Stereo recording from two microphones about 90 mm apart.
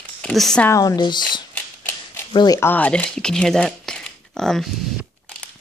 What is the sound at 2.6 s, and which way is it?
Speech, 20° left (ahead or behind).